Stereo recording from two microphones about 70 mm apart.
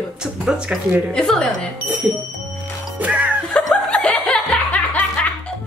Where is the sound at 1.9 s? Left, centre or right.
Right.